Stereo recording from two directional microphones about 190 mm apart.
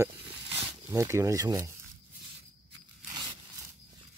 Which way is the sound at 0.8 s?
15° right (ahead or behind).